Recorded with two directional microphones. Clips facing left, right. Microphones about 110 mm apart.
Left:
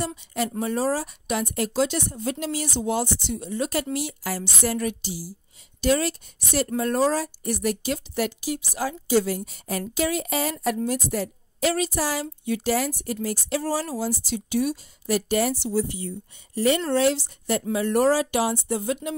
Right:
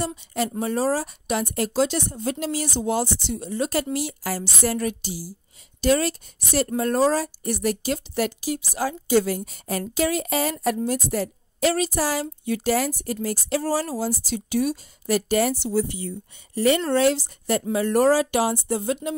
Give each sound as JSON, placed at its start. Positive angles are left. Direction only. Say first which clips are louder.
{"t": 0.0, "sound": "a sound", "louder": "right 1 dB", "side_deg": -35}
{"t": 0.6, "sound": "a woman's voice", "louder": "right 1 dB", "side_deg": -35}
{"t": 16.9, "sound": "a woman's voice", "louder": "right 2 dB", "side_deg": -50}